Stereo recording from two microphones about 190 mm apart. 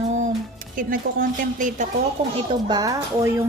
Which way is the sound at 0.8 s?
45° right (ahead or behind).